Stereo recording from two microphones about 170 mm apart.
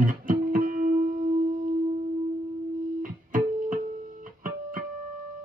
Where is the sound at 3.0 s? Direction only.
50° right (ahead or behind).